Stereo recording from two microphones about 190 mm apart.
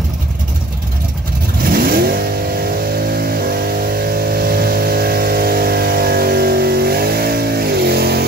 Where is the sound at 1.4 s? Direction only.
50° right (ahead or behind).